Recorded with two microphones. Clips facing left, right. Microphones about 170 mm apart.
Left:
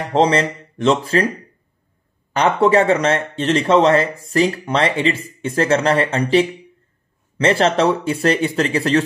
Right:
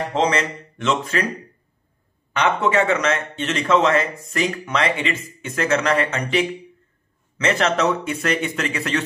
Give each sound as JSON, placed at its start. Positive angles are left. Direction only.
{"t": 0.1, "sound": "speech", "side_deg": 30}
{"t": 2.3, "sound": "speech", "side_deg": 35}